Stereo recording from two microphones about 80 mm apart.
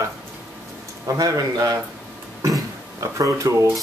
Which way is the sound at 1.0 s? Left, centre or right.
Right.